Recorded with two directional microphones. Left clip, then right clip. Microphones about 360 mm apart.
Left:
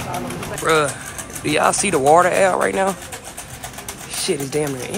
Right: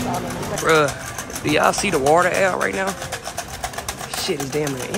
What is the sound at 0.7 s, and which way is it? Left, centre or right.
Speech, centre.